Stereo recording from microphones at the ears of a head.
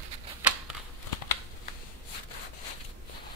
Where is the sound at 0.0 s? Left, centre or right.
Right.